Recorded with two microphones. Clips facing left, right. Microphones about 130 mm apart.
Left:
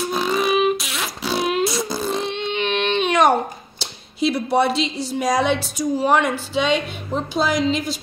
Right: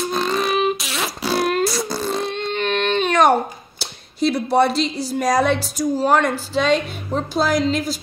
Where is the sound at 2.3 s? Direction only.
40° right (ahead or behind).